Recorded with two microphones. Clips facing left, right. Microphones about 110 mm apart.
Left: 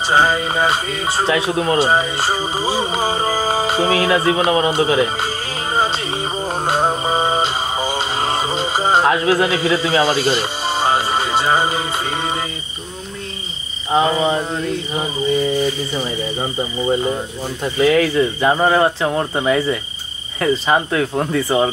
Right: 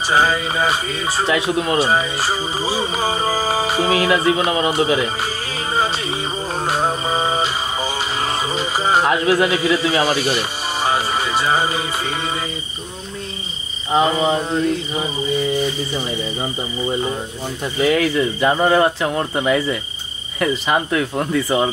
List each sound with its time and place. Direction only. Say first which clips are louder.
0.1 s speech: left 1 dB; 25° left (ahead or behind)
6.6 s mantra: left 2 dB; 25° left (ahead or behind)
17.8 s speech: left 2 dB; 35° left (ahead or behind)